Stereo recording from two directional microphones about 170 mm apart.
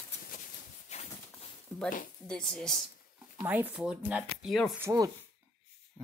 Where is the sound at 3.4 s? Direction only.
10° right (ahead or behind).